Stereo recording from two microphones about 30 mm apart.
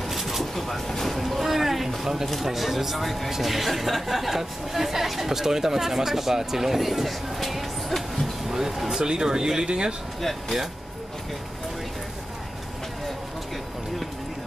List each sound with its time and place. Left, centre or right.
0.1 s a sound: centre
2.4 s a woman's voice: centre
8.5 s speech: centre
9.0 s speech: right